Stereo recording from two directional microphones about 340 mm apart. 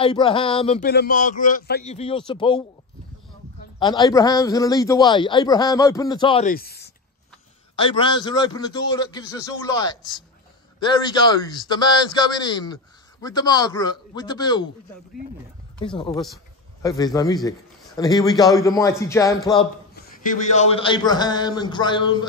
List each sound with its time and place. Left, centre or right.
0.0 s a man's voice: centre
3.8 s a man's voice: centre; by 6.9 s left
7.7 s a man's voice: centre
16.8 s a man's voice: centre